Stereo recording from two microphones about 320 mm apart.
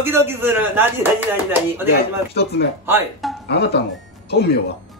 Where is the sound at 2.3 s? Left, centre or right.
Left.